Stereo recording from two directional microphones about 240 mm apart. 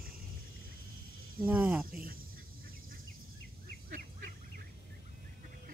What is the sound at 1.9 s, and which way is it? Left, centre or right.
Speech, right.